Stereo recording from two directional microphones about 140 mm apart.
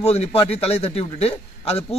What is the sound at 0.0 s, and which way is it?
Speech, 45° left (ahead or behind).